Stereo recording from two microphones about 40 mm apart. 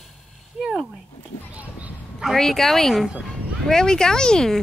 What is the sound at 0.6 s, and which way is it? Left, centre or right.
Speech, centre.